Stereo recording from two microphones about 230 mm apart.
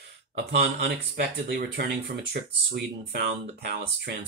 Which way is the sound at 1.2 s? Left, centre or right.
Right.